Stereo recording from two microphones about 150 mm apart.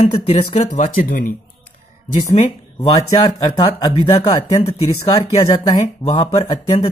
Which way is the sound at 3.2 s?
25° left (ahead or behind).